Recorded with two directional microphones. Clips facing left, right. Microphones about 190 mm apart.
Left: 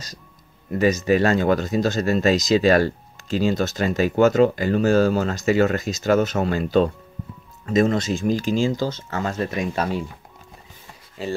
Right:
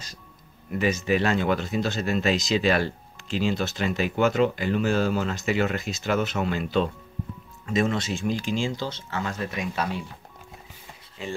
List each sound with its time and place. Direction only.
0.7 s speech: 40° left (ahead or behind)
11.2 s speech: 35° left (ahead or behind)